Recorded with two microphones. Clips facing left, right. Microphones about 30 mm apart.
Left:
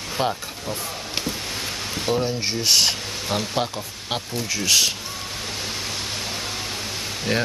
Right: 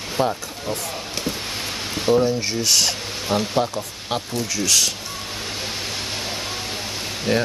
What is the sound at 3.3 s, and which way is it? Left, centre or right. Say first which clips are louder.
Speech: right 4 dB; centre.